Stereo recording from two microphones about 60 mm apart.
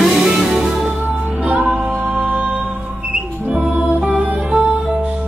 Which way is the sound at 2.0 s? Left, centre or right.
Right.